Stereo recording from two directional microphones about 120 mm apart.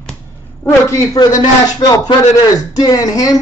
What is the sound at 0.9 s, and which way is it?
Speech, 30° left (ahead or behind).